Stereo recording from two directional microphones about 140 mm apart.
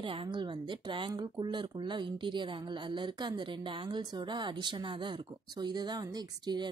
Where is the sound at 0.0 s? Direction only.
40° right (ahead or behind).